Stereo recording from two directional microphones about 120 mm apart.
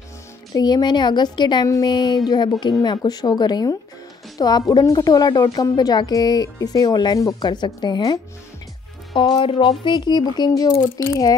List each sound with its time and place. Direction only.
0.6 s speech: 35° left (ahead or behind)
9.3 s speech: 45° left (ahead or behind); by 11.3 s 30° left (ahead or behind)